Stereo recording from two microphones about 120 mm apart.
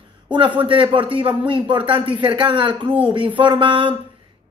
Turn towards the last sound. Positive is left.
turn(degrees=-45)  # may be behind; listen again after turning